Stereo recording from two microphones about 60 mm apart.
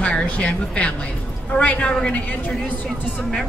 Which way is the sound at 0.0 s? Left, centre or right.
Centre.